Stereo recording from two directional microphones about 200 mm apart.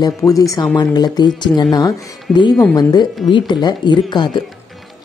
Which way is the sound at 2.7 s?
20° left (ahead or behind).